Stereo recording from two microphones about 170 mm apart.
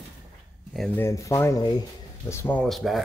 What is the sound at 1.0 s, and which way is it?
Speech, 15° left (ahead or behind).